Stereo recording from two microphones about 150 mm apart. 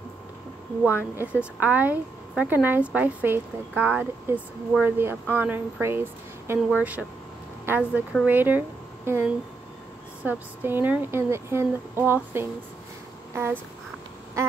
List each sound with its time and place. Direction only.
0.9 s a woman's voice: 10° right (ahead or behind)